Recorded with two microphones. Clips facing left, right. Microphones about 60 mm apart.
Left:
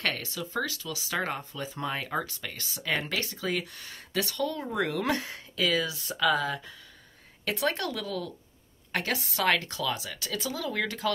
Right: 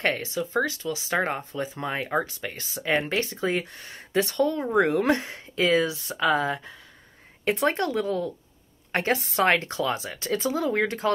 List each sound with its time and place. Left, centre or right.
0.0 s speech: right